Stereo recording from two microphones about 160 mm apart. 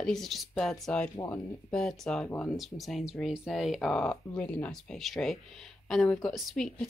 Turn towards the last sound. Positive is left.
turn(degrees=0)  # may be behind; listen again after turning